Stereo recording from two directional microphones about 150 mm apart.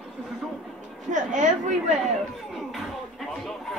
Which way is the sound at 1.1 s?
55° right (ahead or behind).